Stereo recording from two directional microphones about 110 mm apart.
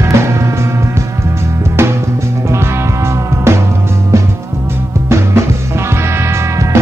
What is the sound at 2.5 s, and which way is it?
Music, 25° right (ahead or behind).